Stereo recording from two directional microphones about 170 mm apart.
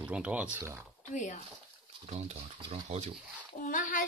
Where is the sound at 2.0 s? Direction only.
40° right (ahead or behind).